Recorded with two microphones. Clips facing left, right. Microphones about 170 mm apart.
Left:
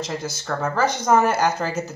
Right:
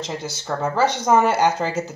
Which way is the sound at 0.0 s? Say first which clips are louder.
Left 1 dB; 15° right (ahead or behind).